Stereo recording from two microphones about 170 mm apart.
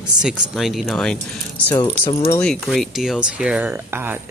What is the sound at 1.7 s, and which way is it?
Speech, 30° left (ahead or behind).